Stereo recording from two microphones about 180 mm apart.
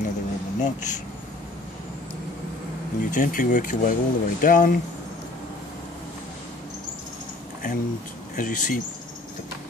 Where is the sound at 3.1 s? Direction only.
50° left (ahead or behind).